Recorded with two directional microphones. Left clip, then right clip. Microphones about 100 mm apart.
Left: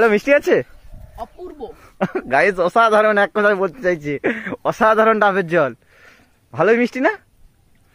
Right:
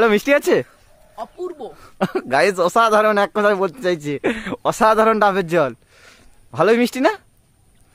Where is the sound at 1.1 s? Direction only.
35° right (ahead or behind).